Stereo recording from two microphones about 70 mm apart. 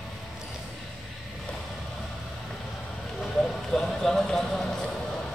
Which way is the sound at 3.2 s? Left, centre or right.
Centre.